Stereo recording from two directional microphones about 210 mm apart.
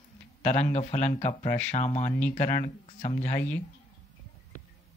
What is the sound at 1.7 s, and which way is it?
Speech, 35° left (ahead or behind).